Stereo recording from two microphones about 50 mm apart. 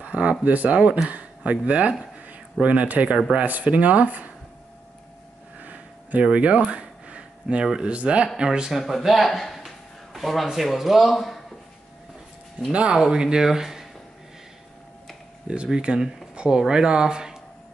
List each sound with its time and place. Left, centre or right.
0.0 s speech: right
5.6 s a sound: right
6.2 s speech: right
6.7 s a sound: right
7.6 s speech: centre
8.7 s speech: centre
12.9 s speech: centre
15.4 s speech: right